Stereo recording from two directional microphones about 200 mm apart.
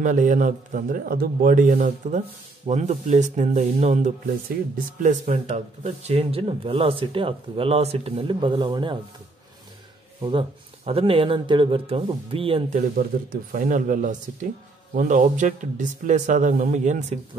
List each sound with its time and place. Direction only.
0.0 s a man's voice: 40° right (ahead or behind); by 8.9 s 25° right (ahead or behind)
10.9 s a man's voice: 25° right (ahead or behind)